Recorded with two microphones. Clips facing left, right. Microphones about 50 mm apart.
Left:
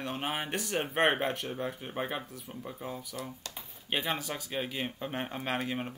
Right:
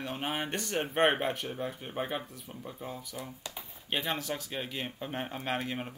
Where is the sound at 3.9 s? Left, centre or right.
Centre.